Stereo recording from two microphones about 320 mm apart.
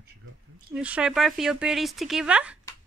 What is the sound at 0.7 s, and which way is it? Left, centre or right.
Speech, centre.